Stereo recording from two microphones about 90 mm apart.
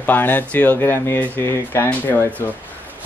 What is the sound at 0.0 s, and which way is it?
Speech, 20° left (ahead or behind).